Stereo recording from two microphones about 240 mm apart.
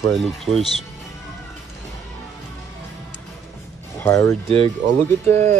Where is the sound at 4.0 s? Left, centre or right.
Centre.